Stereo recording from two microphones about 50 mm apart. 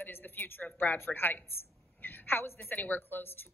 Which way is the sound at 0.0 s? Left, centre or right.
Left.